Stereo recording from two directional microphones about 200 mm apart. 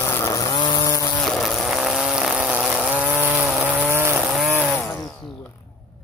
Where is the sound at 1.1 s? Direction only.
5° left (ahead or behind).